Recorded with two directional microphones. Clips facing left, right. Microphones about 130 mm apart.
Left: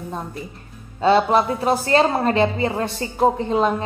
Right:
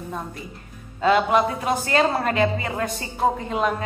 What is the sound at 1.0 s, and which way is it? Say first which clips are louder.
A woman's voice: left 2 dB; 30° left (ahead or behind).